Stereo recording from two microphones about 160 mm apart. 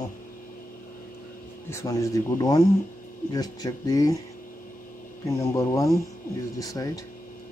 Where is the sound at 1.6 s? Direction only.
15° left (ahead or behind).